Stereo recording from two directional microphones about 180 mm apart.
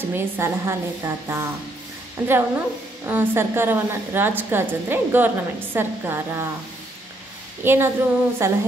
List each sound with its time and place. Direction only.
0.0 s a woman's voice: 15° right (ahead or behind)
7.6 s a woman's voice: 15° right (ahead or behind)